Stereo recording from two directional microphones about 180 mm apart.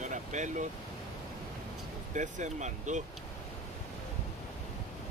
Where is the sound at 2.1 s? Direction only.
45° right (ahead or behind).